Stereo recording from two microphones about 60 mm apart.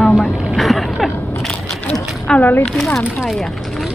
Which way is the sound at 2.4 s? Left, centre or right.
Left.